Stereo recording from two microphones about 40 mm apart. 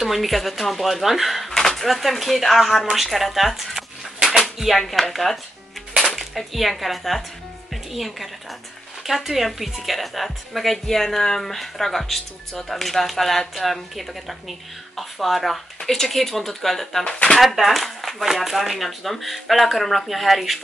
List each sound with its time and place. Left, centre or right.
0.0 s speech: centre
1.5 s dishes: centre
1.9 s speech: centre
17.1 s speech: centre
17.4 s speech: centre